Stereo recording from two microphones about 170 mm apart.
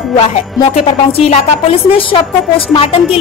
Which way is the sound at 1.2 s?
35° left (ahead or behind).